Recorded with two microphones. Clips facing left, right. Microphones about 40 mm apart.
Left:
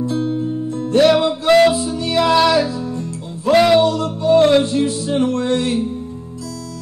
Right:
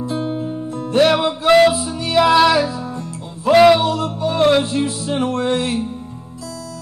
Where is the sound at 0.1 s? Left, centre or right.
Centre.